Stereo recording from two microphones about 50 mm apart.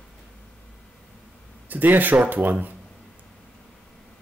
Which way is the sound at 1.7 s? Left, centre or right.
Right.